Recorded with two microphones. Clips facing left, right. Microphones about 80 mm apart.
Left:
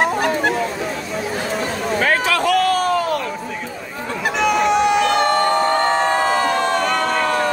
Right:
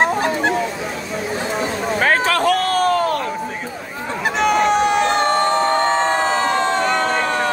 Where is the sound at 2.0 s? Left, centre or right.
Right.